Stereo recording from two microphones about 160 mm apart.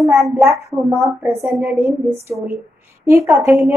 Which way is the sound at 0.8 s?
15° right (ahead or behind).